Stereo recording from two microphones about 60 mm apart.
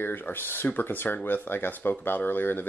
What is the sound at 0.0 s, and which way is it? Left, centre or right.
Speech, left.